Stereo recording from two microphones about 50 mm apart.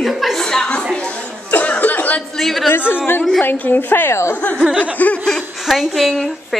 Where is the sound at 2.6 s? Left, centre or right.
Left.